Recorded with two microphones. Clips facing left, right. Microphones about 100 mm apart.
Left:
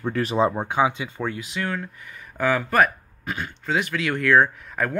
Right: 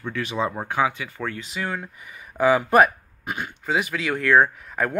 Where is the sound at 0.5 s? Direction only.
20° left (ahead or behind).